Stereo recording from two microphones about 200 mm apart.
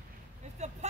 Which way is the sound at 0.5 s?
35° right (ahead or behind).